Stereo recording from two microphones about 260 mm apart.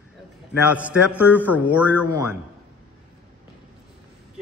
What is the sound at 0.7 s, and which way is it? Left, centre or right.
A man's voice, centre.